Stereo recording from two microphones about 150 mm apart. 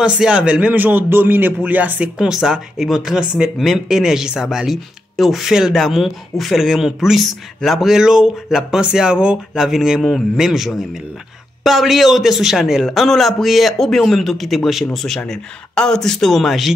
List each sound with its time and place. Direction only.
0.0 s a man's voice: 5° right (ahead or behind)